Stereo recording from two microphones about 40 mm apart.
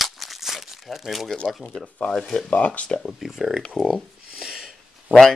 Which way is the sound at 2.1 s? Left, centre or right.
Centre.